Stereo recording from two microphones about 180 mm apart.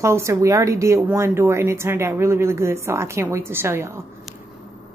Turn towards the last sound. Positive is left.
turn(degrees=-15)  # may be behind; listen again after turning